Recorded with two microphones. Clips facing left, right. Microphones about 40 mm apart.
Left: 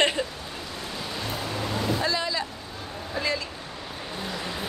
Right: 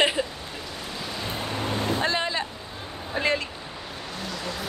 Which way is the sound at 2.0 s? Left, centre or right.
Right.